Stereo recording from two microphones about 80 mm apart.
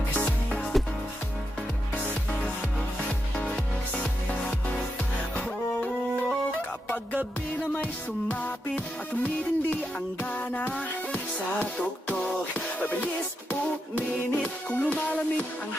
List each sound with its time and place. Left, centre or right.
0.1 s music: centre
3.1 s music: centre
7.6 s music: centre
12.1 s music: centre